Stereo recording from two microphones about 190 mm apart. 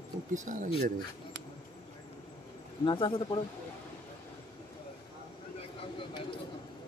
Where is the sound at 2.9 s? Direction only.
25° left (ahead or behind).